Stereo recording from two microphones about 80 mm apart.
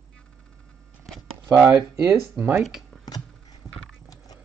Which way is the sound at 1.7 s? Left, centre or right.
Right.